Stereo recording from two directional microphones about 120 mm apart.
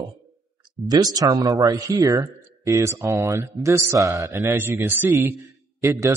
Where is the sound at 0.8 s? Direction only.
30° right (ahead or behind).